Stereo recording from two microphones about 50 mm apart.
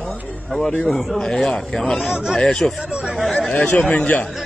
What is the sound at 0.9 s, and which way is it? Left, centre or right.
Speech, centre.